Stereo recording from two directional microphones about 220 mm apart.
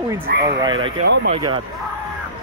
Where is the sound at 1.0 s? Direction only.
50° right (ahead or behind).